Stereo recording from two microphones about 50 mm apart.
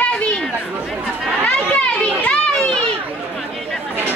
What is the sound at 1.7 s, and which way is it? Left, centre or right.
Speech, left.